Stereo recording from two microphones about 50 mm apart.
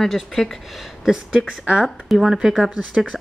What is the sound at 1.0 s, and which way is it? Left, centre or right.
Speech, centre.